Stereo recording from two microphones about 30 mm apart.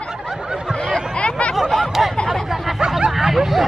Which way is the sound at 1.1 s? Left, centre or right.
Left.